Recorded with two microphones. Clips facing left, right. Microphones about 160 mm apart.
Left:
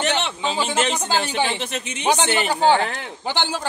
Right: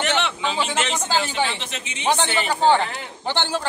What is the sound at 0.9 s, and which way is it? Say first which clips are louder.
Speech: left 1 dB; 15° left (ahead or behind).